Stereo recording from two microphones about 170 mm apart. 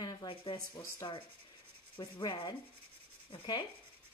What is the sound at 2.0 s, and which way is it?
Rub, 25° left (ahead or behind).